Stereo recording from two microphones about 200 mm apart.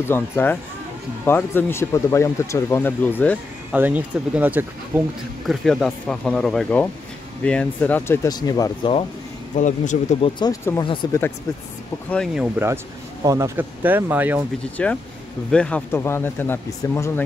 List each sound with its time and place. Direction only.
0.0 s speech: 10° left (ahead or behind)
3.7 s speech: 10° right (ahead or behind)
5.5 s speech: centre (ahead or behind); by 8.9 s 20° left (ahead or behind)
9.6 s speech: 40° left (ahead or behind)
10.4 s speech: 15° left (ahead or behind)
12.1 s speech: 5° left (ahead or behind)
12.5 s speech: 15° right (ahead or behind)
14.8 s speech: 5° left (ahead or behind)